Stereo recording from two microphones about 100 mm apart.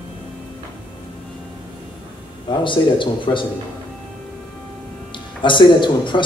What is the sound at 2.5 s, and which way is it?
Speech, 55° left (ahead or behind).